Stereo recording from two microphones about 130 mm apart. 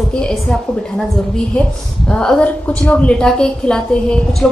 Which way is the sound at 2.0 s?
5° left (ahead or behind).